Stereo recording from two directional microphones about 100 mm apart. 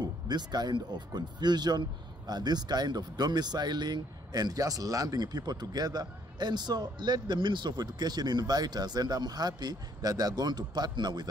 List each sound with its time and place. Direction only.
0.0 s speech: 45° right (ahead or behind)